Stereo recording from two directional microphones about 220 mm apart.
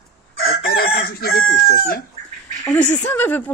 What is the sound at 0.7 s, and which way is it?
Chicken, 45° left (ahead or behind).